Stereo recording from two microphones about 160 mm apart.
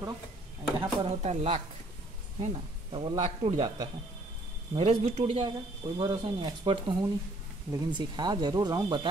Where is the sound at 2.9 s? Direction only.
30° right (ahead or behind).